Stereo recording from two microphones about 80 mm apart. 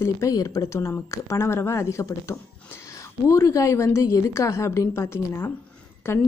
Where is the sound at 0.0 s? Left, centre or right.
Left.